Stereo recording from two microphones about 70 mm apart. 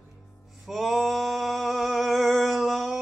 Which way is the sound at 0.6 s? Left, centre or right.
Centre.